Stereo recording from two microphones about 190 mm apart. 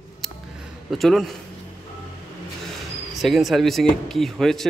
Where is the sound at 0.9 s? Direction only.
Centre (ahead or behind).